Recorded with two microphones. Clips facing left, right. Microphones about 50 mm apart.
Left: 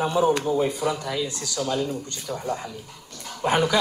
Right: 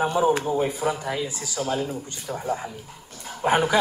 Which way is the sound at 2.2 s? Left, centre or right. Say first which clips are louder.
Right 2 dB; right.